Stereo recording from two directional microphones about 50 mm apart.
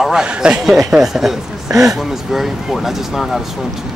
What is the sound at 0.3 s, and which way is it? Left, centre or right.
Speech, right.